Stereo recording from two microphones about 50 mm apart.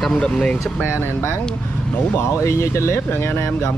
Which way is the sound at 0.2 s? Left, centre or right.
Left.